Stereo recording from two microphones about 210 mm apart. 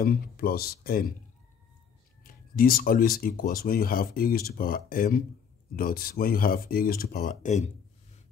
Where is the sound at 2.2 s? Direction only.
45° left (ahead or behind).